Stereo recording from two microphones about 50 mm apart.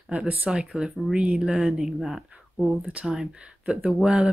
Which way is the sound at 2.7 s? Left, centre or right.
Right.